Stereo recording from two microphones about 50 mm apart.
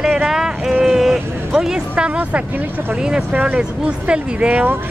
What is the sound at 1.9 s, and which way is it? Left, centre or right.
Speech, right.